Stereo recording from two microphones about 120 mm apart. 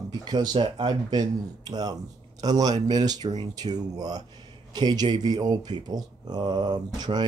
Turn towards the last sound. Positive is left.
turn(degrees=-35)  # may be behind; listen again after turning